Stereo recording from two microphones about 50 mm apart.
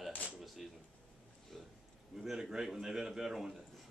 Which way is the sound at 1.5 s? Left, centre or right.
Centre.